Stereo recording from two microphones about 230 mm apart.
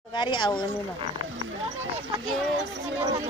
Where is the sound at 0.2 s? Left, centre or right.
Centre.